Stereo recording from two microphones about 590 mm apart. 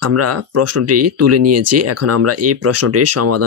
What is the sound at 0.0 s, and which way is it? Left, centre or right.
Speech, right.